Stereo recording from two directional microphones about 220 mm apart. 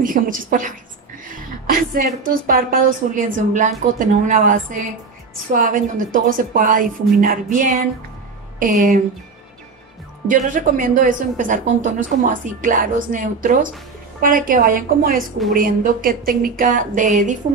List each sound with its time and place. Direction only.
0.0 s a woman's voice: 40° right (ahead or behind)
1.2 s a sound: 40° right (ahead or behind)
2.4 s a woman's voice: 40° right (ahead or behind)
10.2 s a woman's voice: 35° right (ahead or behind)